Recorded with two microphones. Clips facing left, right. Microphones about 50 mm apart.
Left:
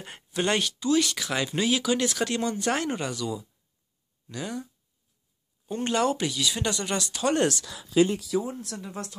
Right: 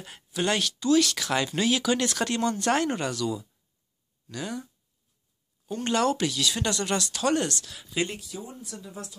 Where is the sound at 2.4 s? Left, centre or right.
Centre.